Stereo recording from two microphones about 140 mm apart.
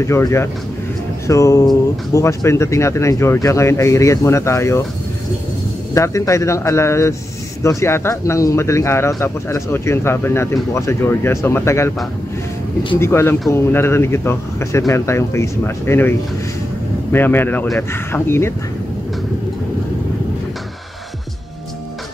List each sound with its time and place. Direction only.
0.0 s speech: 20° left (ahead or behind)
5.9 s speech: 20° left (ahead or behind)
13.0 s speech: 15° left (ahead or behind)